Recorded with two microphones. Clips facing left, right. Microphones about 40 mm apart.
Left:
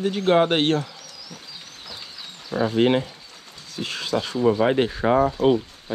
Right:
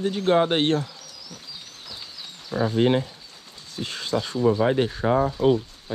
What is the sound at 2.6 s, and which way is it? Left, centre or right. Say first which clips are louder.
Speech: left 1 dB; left.